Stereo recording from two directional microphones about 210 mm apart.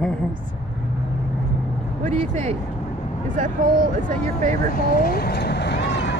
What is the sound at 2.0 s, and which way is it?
Speech, 35° right (ahead or behind).